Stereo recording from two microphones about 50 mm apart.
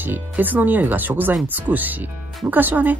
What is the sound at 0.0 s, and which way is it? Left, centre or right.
Speech, right.